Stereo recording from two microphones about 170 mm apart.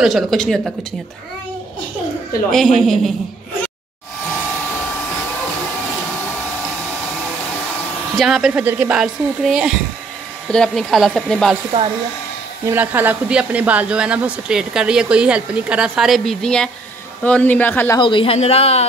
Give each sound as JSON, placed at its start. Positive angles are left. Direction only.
{"t": 0.0, "sound": "speech", "side_deg": 0}
{"t": 2.5, "sound": "speech", "side_deg": 0}
{"t": 8.2, "sound": "speech", "side_deg": 0}
{"t": 12.6, "sound": "a man's voice", "side_deg": -10}
{"t": 17.9, "sound": "speech", "side_deg": 30}